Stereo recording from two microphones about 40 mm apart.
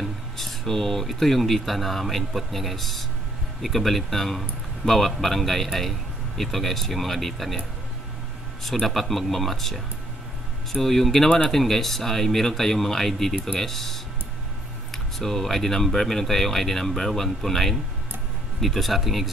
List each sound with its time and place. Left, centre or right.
0.4 s a man's voice: centre
8.8 s a man's voice: centre